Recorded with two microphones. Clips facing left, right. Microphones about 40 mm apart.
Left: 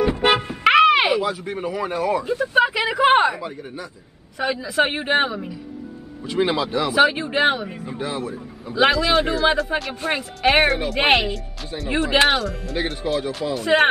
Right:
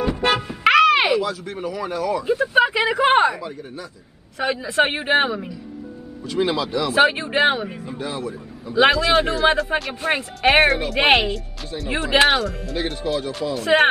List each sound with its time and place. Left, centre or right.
0.0 s music: left
0.9 s a sound: centre
1.2 s speech: centre
2.2 s speech: centre
3.3 s speech: centre
4.6 s speech: centre
6.2 s speech: centre
6.9 s speech: centre
8.0 s speech: centre
8.7 s speech: centre
13.7 s speech: centre